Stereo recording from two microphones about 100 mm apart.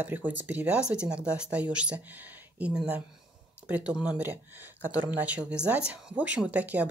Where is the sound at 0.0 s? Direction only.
20° right (ahead or behind).